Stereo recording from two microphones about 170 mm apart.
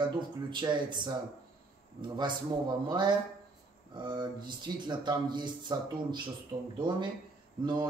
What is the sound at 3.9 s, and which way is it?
A man's voice, 30° right (ahead or behind).